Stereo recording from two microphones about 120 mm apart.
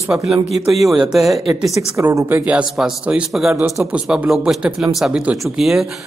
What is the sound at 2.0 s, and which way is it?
Speech, 25° right (ahead or behind).